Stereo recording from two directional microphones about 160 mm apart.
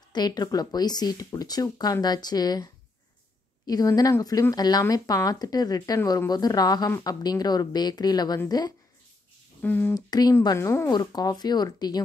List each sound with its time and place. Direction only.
0.1 s speech: 25° left (ahead or behind)
9.6 s speech: 10° left (ahead or behind)
9.9 s speech: 25° left (ahead or behind)